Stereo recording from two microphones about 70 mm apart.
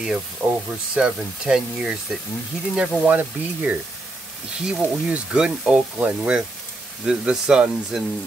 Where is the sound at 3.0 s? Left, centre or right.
Right.